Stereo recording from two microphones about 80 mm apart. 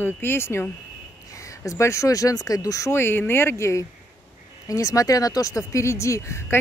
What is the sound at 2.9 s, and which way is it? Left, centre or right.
Speech, left.